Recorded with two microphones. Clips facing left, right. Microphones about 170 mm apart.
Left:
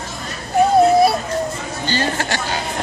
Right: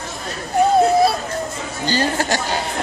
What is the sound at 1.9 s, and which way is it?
Speech, 45° right (ahead or behind).